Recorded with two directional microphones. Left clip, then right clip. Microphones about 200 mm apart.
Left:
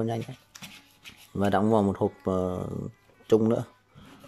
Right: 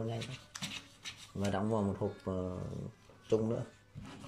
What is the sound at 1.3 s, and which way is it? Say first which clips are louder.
Speech: left 12 dB; 40° left (ahead or behind).